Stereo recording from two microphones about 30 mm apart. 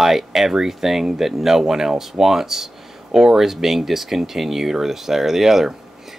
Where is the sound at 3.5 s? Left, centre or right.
Centre.